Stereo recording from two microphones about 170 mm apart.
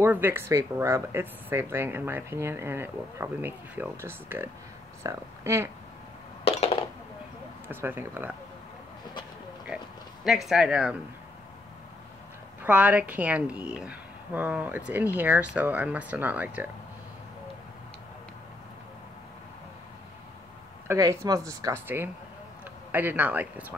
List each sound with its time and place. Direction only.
0.0 s speech: 10° right (ahead or behind)
6.4 s a sound: 35° left (ahead or behind)
7.6 s speech: 10° right (ahead or behind)
10.2 s speech: centre (ahead or behind)
12.6 s speech: 10° right (ahead or behind)
20.8 s speech: 15° right (ahead or behind)